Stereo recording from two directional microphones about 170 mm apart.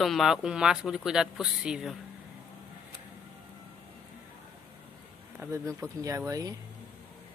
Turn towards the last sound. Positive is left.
turn(degrees=-20)  # may be behind; listen again after turning